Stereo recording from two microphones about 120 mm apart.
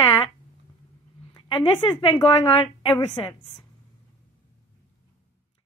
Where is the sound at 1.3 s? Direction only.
50° left (ahead or behind).